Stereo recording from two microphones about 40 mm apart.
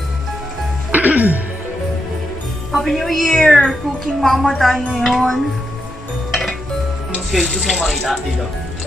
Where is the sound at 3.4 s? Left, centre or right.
Centre.